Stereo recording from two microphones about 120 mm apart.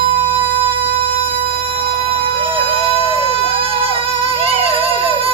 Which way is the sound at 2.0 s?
45° right (ahead or behind).